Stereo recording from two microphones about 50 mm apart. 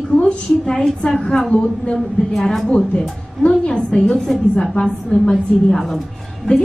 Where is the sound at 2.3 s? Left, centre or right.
Centre.